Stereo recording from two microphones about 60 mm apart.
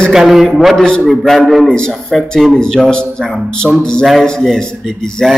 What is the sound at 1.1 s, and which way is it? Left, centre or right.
Speech, centre.